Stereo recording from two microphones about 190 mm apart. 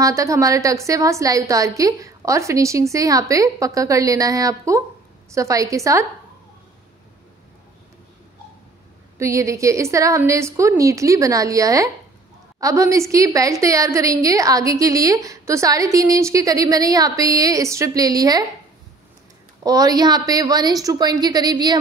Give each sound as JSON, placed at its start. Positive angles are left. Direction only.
{"t": 0.0, "sound": "a woman's voice", "side_deg": -15}
{"t": 9.2, "sound": "a woman's voice", "side_deg": -15}
{"t": 19.6, "sound": "a woman's voice", "side_deg": -20}